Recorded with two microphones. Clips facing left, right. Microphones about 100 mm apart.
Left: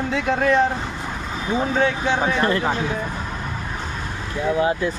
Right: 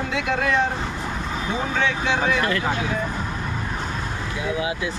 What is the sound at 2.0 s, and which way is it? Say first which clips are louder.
Speech: left 2 dB; 35° left (ahead or behind).